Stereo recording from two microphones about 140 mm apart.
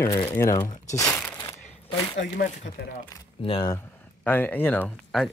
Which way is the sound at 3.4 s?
40° left (ahead or behind).